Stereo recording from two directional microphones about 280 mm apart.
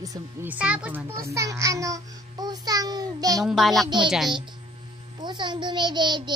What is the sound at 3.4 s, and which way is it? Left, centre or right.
Speech, centre.